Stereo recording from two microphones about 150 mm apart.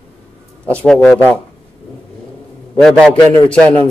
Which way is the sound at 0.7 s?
10° left (ahead or behind).